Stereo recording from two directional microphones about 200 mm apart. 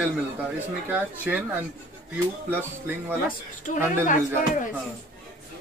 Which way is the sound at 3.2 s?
40° left (ahead or behind).